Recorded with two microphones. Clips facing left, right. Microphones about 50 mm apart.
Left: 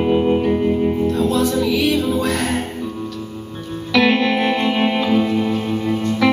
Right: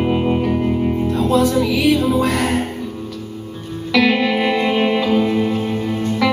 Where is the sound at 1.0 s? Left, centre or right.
Right.